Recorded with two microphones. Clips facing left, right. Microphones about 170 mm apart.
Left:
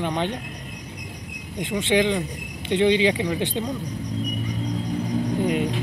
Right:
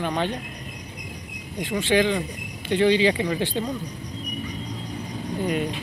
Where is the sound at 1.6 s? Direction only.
20° left (ahead or behind).